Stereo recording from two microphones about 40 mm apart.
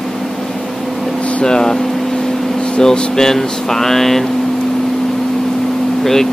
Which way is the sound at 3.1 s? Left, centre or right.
Centre.